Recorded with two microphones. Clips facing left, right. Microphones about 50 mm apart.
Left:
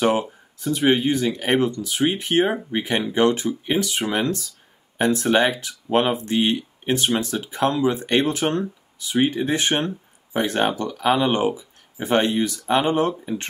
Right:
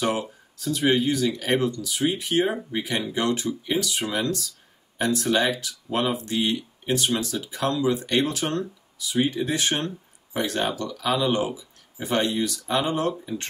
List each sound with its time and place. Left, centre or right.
0.0 s speech: left